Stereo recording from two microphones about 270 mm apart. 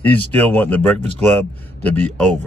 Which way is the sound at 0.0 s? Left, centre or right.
Centre.